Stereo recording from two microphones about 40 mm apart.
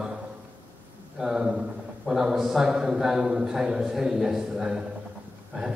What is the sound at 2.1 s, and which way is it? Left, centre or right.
A man's voice, centre.